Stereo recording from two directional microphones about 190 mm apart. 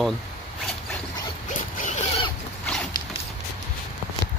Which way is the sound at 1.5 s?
45° left (ahead or behind).